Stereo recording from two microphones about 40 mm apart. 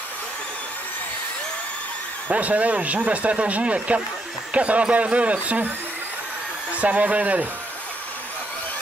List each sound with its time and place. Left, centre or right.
2.2 s speech: right
6.7 s speech: right